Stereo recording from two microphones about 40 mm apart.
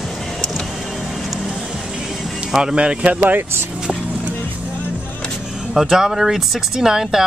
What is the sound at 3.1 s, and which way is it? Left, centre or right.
Speech, right.